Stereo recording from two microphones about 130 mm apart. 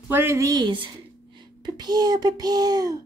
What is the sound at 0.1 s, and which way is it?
A woman's voice, 20° right (ahead or behind).